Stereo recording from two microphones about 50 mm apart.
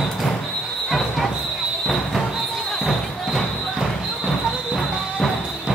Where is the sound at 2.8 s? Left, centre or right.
Centre.